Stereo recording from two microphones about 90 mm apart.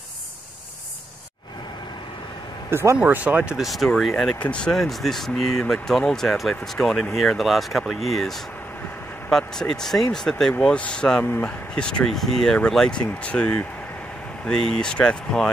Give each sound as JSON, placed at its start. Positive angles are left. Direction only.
{"t": 2.7, "sound": "speech", "side_deg": -30}
{"t": 3.0, "sound": "speech", "side_deg": -15}
{"t": 3.5, "sound": "speech", "side_deg": 0}
{"t": 4.4, "sound": "speech", "side_deg": 10}